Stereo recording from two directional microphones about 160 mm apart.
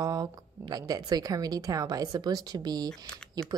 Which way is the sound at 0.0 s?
25° right (ahead or behind).